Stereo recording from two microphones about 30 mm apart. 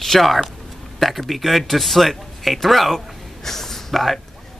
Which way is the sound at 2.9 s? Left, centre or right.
Centre.